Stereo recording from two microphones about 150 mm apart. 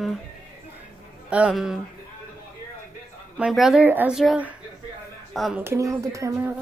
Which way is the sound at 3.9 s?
10° right (ahead or behind).